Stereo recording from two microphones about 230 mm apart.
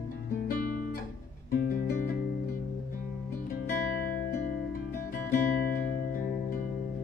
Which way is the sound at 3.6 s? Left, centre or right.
Left.